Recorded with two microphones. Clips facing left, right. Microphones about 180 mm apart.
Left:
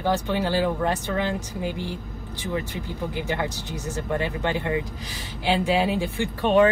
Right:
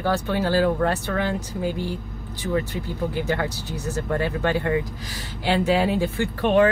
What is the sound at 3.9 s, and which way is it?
Speech, 20° left (ahead or behind).